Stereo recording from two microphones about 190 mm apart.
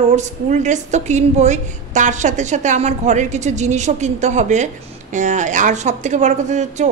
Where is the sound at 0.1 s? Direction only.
40° right (ahead or behind).